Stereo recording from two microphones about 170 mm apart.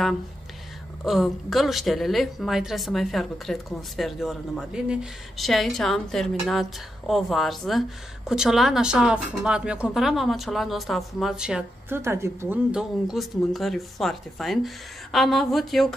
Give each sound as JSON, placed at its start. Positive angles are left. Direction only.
{"t": 1.0, "sound": "a woman's voice", "side_deg": 0}
{"t": 12.0, "sound": "a woman's voice", "side_deg": -15}
{"t": 12.7, "sound": "a woman's voice", "side_deg": 0}